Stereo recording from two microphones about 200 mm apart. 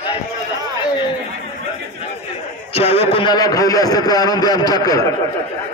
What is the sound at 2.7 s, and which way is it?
A man's voice, 30° left (ahead or behind).